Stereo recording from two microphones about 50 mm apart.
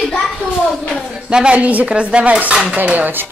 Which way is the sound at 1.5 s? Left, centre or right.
Right.